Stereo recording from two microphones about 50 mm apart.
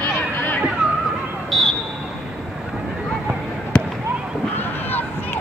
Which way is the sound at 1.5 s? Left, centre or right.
Centre.